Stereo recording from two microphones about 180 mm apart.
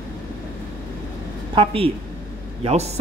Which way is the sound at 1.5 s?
30° right (ahead or behind).